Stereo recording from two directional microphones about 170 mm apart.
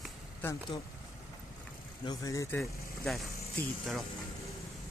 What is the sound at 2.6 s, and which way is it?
Speech, centre (ahead or behind).